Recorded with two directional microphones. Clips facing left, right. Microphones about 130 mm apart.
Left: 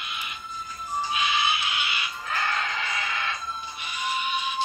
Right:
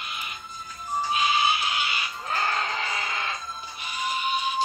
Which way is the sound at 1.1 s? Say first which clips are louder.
Right 3 dB; 40° right (ahead or behind).